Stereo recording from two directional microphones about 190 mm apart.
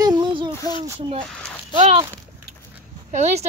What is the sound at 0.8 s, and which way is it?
Speech, 20° right (ahead or behind).